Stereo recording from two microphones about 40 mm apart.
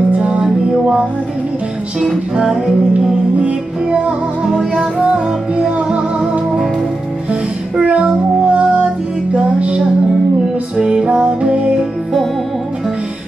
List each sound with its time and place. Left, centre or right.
0.4 s music: centre
3.3 s music: right
7.8 s child singing: right
9.3 s music: right
10.8 s music: right